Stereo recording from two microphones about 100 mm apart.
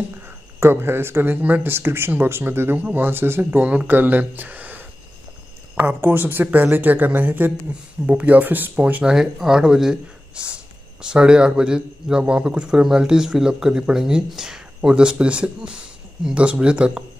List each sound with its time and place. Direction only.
0.6 s speech: 25° right (ahead or behind)
9.1 s speech: 5° right (ahead or behind)